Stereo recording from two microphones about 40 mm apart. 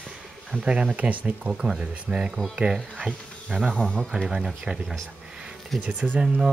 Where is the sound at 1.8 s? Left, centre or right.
Right.